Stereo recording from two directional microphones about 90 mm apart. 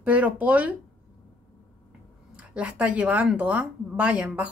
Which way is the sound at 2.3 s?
15° right (ahead or behind).